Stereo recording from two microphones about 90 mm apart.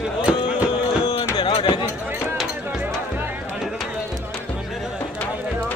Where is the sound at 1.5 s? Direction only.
65° left (ahead or behind).